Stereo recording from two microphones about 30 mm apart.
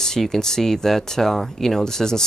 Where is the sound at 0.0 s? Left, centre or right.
Centre.